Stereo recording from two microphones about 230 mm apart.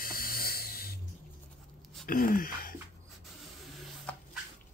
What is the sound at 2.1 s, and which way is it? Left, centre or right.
Speech, left.